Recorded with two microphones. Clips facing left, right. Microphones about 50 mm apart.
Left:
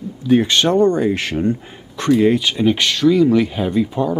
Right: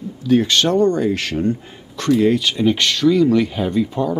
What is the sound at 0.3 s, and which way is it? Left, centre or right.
Speech, left.